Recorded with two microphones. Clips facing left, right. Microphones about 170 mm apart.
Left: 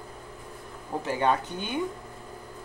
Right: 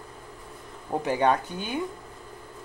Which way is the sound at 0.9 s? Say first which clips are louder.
Right 4 dB; 20° right (ahead or behind).